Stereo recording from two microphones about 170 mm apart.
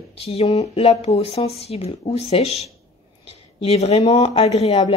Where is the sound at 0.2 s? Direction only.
35° left (ahead or behind).